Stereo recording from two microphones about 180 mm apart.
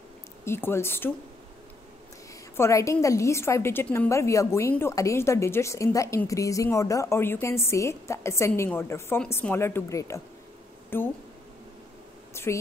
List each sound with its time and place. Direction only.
0.5 s a woman's voice: 15° left (ahead or behind)
2.5 s a woman's voice: 15° left (ahead or behind)
12.4 s a sound: 15° left (ahead or behind)